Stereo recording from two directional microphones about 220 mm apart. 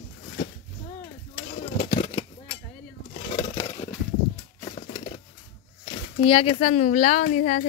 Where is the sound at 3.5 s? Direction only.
30° left (ahead or behind).